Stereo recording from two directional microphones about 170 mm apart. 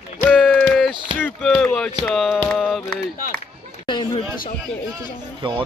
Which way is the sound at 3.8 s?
25° left (ahead or behind).